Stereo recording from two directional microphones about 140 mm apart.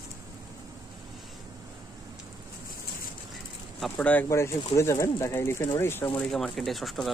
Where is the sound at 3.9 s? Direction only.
15° left (ahead or behind).